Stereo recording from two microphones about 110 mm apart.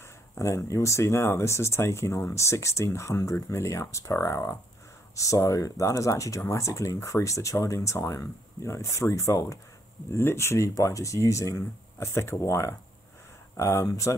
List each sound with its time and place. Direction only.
0.0 s speech: 25° left (ahead or behind)